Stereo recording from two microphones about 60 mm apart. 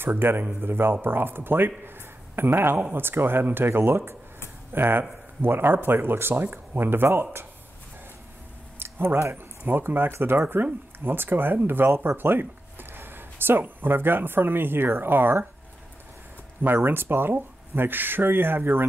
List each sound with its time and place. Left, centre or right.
0.0 s speech: right
8.7 s speech: right
16.6 s speech: right